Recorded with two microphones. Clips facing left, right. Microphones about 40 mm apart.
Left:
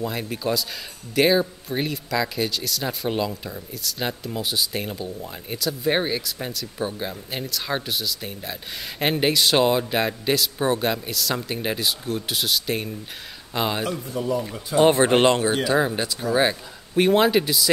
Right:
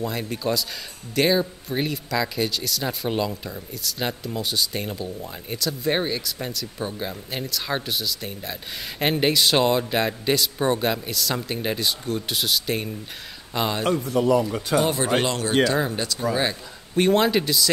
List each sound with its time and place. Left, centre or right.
0.0 s speech: centre
14.0 s speech: right
14.8 s speech: left
15.6 s speech: centre